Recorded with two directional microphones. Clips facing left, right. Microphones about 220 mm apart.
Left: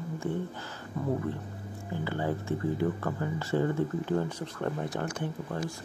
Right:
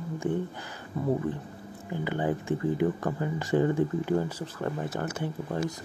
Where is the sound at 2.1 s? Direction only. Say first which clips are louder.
Right 3 dB; 15° right (ahead or behind).